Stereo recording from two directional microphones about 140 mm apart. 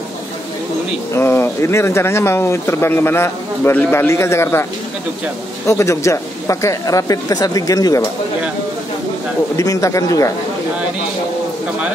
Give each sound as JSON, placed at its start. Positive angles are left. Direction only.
{"t": 1.1, "sound": "speech", "side_deg": 20}
{"t": 5.7, "sound": "speech", "side_deg": 20}
{"t": 9.6, "sound": "speech", "side_deg": 25}